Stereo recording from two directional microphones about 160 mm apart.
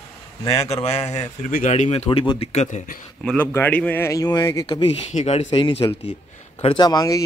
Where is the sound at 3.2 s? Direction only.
10° left (ahead or behind).